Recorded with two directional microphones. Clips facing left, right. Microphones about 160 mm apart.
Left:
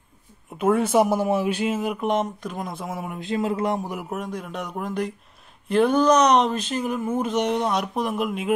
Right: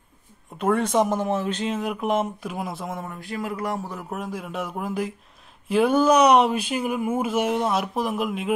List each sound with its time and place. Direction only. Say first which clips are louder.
0.6 s speech: left 2 dB; 5° left (ahead or behind)
3.1 s speech: left 5 dB; 20° left (ahead or behind)
4.1 s speech: left 1 dB; centre (ahead or behind)